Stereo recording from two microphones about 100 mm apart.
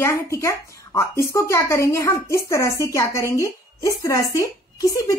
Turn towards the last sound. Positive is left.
turn(degrees=35)  # may be behind; listen again after turning